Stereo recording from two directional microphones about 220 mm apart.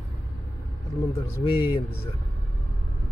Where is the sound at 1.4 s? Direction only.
20° left (ahead or behind).